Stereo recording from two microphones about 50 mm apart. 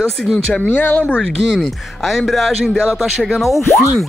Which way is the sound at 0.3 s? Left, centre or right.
Left.